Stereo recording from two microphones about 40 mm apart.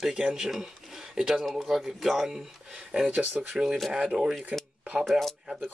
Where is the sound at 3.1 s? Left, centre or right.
Right.